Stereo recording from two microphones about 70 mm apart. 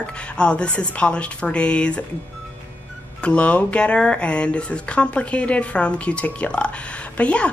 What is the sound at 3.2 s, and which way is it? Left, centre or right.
A woman's voice, centre.